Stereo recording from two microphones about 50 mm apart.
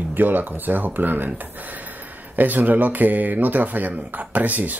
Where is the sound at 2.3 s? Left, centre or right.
Right.